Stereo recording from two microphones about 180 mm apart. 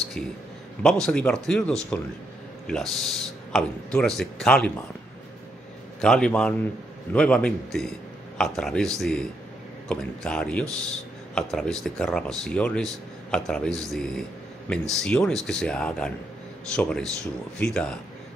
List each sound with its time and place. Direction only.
0.8 s speech: 5° left (ahead or behind)
5.9 s speech: 5° left (ahead or behind)